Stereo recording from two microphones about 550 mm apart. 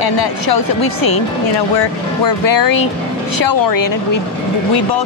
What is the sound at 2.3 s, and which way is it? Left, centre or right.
Speech, left.